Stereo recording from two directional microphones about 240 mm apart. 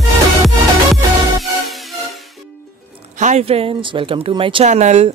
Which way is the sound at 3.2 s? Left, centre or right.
Right.